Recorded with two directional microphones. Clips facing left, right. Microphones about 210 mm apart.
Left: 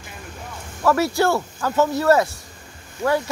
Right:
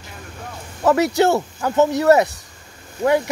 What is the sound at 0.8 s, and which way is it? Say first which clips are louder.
Speech: right 3 dB; 20° right (ahead or behind).